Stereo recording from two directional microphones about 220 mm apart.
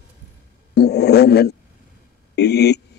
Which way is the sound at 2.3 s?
50° left (ahead or behind).